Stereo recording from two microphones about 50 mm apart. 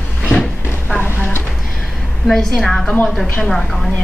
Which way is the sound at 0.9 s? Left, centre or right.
Left.